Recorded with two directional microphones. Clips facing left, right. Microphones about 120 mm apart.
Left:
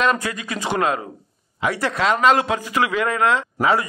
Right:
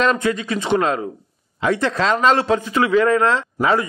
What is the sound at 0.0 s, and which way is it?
A man's voice, 30° right (ahead or behind).